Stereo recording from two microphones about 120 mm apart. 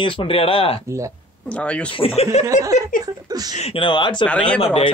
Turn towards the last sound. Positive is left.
turn(degrees=50)  # may be behind; listen again after turning